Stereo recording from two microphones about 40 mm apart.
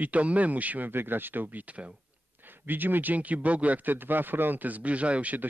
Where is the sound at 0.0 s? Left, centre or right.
Right.